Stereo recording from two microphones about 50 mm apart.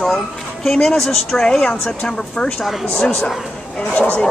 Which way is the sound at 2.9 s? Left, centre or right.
Centre.